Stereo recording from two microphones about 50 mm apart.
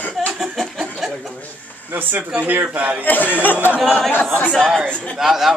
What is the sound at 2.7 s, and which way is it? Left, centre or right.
Speech, right.